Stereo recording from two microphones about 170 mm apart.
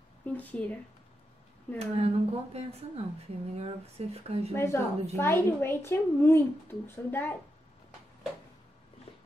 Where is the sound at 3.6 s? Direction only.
35° right (ahead or behind).